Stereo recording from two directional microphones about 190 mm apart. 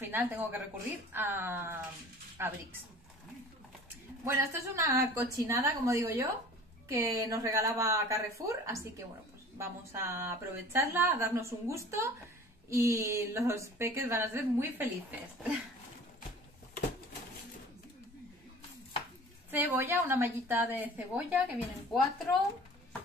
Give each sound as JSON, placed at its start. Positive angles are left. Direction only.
{"t": 0.0, "sound": "a woman's voice", "side_deg": -10}
{"t": 4.2, "sound": "a woman's voice", "side_deg": -15}
{"t": 19.5, "sound": "a woman's voice", "side_deg": -10}
{"t": 21.9, "sound": "speech", "side_deg": 0}